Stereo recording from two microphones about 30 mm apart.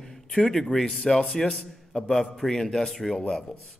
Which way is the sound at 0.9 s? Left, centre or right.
Left.